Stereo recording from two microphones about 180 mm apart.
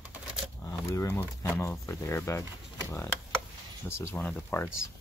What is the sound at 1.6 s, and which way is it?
Speech, 15° left (ahead or behind).